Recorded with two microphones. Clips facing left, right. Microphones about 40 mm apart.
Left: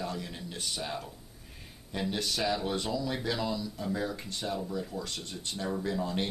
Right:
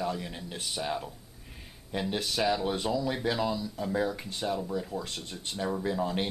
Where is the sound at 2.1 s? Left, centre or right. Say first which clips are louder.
Right 3 dB; centre.